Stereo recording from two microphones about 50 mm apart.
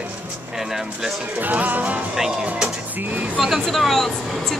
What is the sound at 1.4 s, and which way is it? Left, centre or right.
Music, right.